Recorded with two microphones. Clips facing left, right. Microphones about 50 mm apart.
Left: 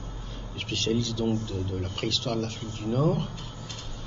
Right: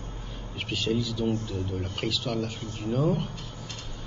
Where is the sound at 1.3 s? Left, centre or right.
Right.